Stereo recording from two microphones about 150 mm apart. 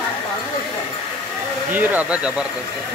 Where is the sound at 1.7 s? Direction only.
10° right (ahead or behind).